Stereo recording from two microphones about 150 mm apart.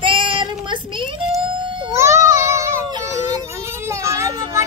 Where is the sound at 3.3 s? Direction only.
15° right (ahead or behind).